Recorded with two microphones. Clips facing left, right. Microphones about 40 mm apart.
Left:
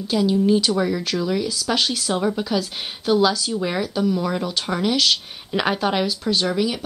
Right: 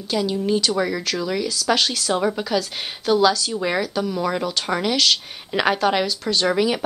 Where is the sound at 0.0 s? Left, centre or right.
Centre.